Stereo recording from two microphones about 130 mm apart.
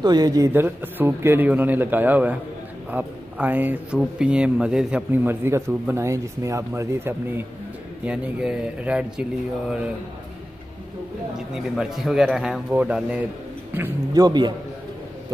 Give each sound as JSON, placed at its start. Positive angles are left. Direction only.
{"t": 0.0, "sound": "speech", "side_deg": -30}
{"t": 0.5, "sound": "speech", "side_deg": -15}
{"t": 8.0, "sound": "speech", "side_deg": -10}
{"t": 11.3, "sound": "speech", "side_deg": -5}
{"t": 14.1, "sound": "speech", "side_deg": -30}